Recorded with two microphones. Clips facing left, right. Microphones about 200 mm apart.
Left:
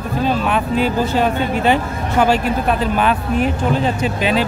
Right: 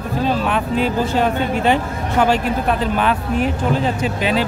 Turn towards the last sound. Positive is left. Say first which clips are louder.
# left 1 dB
turn(degrees=10)  # may be behind; listen again after turning